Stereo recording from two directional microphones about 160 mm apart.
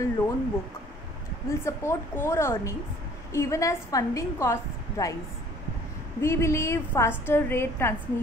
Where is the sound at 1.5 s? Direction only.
20° left (ahead or behind).